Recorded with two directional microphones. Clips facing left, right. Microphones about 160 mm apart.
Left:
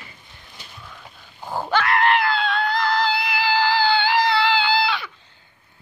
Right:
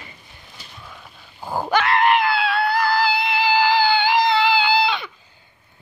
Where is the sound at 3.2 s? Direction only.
20° right (ahead or behind).